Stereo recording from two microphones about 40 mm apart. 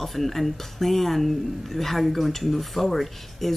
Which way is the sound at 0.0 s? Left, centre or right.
Centre.